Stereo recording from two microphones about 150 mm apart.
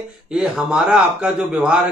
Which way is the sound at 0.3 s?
5° right (ahead or behind).